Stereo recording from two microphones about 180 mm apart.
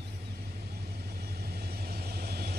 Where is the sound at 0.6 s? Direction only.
65° right (ahead or behind).